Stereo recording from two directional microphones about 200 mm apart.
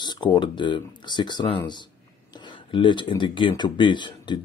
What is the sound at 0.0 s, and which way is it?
Speech, 20° left (ahead or behind).